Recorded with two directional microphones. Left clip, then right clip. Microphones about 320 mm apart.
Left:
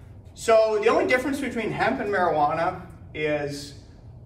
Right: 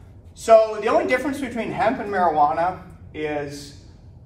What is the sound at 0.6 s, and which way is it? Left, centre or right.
A man's voice, centre.